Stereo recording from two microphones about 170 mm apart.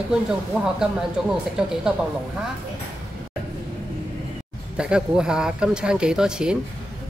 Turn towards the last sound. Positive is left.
turn(degrees=-5)  # may be behind; listen again after turning